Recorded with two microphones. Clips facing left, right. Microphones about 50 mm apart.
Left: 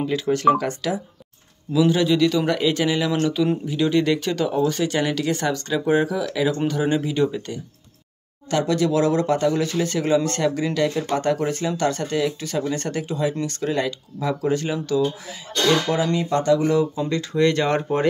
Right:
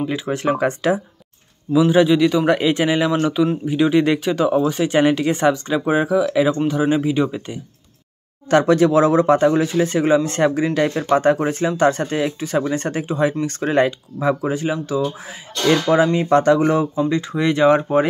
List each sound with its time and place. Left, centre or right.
0.0 s speech: centre
8.5 s speech: right
9.6 s speech: right
15.9 s speech: right
16.3 s speech: right
17.0 s speech: right